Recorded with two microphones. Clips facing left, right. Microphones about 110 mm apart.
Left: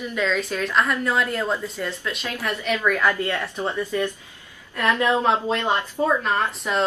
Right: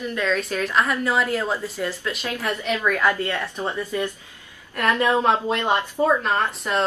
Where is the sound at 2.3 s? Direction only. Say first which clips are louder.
Even; 15° right (ahead or behind).